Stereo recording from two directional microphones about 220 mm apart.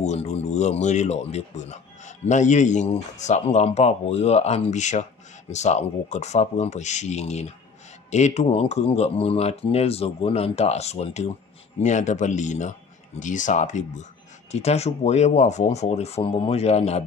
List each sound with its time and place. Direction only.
0.0 s speech: 30° left (ahead or behind)